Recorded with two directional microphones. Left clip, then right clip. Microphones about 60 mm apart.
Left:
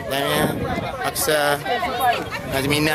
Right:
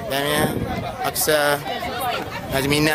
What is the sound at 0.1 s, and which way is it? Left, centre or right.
A man's voice, centre.